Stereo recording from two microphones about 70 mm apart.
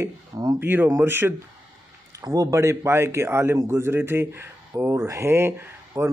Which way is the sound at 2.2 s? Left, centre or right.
Right.